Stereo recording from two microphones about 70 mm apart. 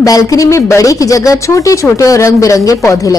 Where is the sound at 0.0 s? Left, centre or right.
Left.